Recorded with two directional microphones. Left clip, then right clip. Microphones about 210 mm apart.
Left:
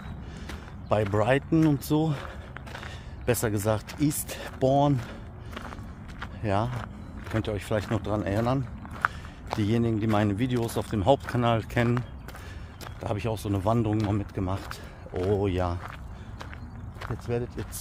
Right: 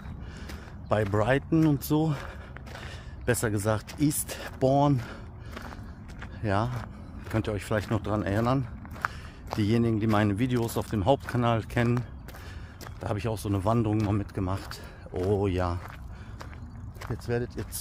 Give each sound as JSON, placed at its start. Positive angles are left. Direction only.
{"t": 0.5, "sound": "speech", "side_deg": -10}
{"t": 13.0, "sound": "speech", "side_deg": -15}
{"t": 17.3, "sound": "speech", "side_deg": -20}